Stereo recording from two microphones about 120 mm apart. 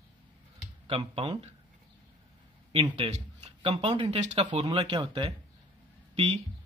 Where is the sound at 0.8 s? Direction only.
50° right (ahead or behind).